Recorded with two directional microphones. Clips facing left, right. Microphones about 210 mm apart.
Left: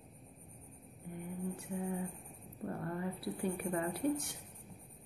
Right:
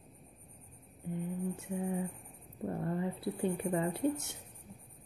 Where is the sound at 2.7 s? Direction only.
20° right (ahead or behind).